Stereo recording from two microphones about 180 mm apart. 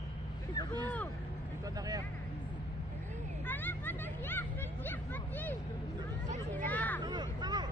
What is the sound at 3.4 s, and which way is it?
Hubbub, 10° left (ahead or behind).